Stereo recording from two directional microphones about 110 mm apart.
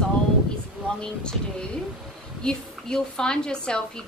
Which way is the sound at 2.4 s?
5° left (ahead or behind).